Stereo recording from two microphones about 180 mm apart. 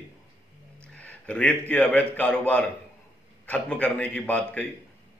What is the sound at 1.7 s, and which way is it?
A man's voice, 10° left (ahead or behind).